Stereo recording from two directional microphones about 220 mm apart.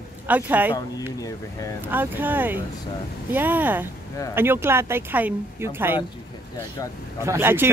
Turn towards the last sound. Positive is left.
turn(degrees=-10)  # may be behind; listen again after turning